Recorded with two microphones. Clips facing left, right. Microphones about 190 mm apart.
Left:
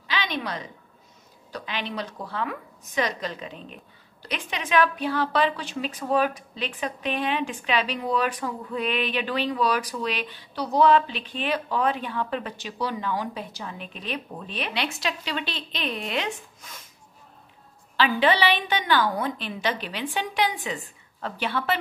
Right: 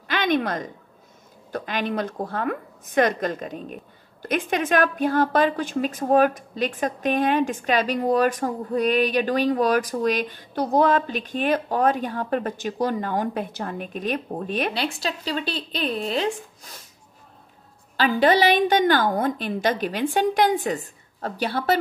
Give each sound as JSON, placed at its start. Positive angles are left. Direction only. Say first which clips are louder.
{"t": 0.1, "sound": "a sound", "louder": "right 7 dB", "side_deg": -50}
{"t": 1.5, "sound": "a woman's voice", "louder": "right 6 dB", "side_deg": -50}
{"t": 14.8, "sound": "speech", "louder": "right 2 dB", "side_deg": -35}
{"t": 17.9, "sound": "a woman's voice", "louder": "right 3 dB", "side_deg": -45}